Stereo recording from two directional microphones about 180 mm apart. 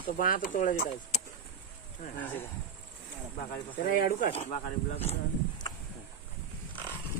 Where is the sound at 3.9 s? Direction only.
50° left (ahead or behind).